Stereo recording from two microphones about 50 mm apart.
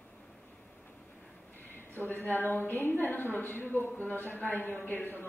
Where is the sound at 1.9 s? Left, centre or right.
Left.